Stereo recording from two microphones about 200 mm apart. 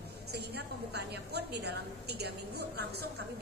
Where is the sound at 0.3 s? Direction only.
55° right (ahead or behind).